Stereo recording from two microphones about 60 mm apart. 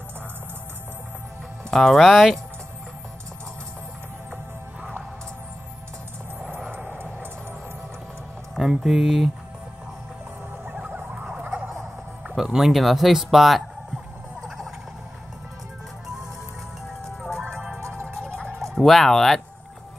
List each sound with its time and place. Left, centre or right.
1.7 s speech: centre
6.9 s music: right
8.5 s speech: centre
10.8 s emergency vehicle: right
12.4 s speech: centre
17.0 s music: centre
17.7 s music: right
18.6 s speech: centre